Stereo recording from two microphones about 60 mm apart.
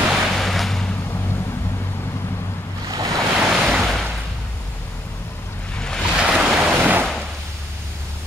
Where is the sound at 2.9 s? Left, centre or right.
Right.